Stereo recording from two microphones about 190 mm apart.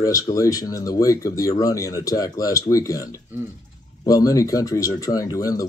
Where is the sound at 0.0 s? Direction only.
20° left (ahead or behind).